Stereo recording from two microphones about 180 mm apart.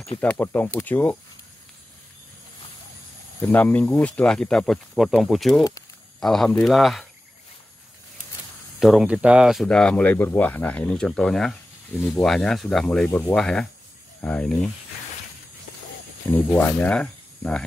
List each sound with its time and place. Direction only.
0.2 s speech: 10° left (ahead or behind)
3.3 s speech: 10° left (ahead or behind)
8.7 s speech: centre (ahead or behind)
16.3 s speech: 10° left (ahead or behind)